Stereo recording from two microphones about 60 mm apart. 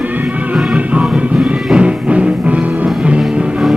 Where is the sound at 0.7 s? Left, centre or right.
Centre.